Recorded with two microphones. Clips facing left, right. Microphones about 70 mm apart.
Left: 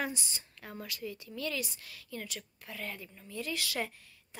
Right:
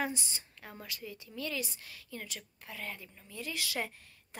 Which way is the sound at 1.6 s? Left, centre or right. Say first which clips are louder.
Even; right.